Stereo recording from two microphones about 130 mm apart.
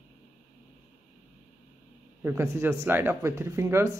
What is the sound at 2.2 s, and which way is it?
Speech, 20° right (ahead or behind).